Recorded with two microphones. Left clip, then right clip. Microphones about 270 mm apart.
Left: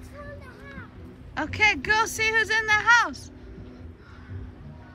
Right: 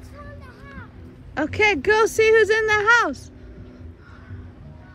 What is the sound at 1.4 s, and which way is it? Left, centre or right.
Speech, centre.